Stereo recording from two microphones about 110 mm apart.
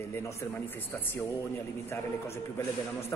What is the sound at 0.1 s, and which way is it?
Speech, 30° left (ahead or behind).